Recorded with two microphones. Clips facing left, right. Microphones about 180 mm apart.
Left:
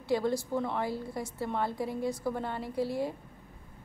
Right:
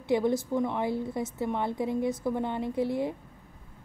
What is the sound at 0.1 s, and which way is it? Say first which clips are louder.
A woman's voice: right 3 dB; 20° right (ahead or behind).